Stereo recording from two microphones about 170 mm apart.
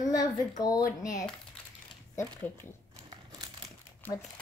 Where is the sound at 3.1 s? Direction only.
20° right (ahead or behind).